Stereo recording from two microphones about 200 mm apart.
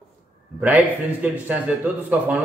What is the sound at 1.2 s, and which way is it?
A man's voice, 10° right (ahead or behind).